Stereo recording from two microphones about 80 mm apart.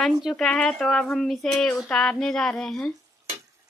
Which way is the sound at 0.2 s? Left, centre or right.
Centre.